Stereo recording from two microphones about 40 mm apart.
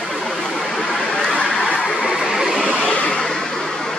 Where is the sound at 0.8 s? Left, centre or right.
Centre.